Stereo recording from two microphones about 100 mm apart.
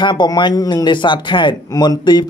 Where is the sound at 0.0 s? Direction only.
50° left (ahead or behind).